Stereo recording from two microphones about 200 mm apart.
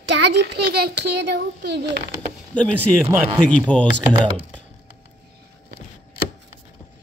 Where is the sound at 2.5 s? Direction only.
5° left (ahead or behind).